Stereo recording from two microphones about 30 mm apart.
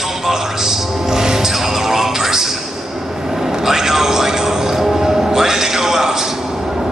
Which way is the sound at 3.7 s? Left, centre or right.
Centre.